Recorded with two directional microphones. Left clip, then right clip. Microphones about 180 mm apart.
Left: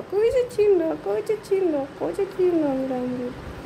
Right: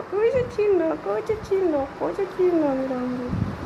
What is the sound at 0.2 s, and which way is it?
Speech, 20° left (ahead or behind).